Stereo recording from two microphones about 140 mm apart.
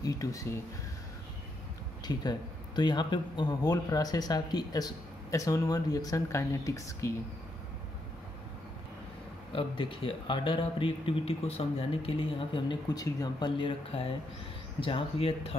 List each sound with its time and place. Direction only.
0.0 s a man's voice: 25° left (ahead or behind)
2.0 s a man's voice: 30° left (ahead or behind)
9.5 s speech: 40° left (ahead or behind)